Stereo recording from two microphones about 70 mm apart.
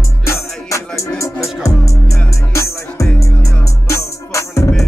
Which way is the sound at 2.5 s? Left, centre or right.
Left.